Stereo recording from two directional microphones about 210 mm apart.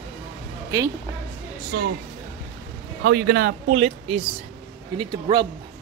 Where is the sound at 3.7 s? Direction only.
30° right (ahead or behind).